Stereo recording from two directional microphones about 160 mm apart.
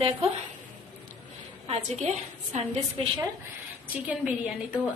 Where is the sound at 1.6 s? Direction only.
45° right (ahead or behind).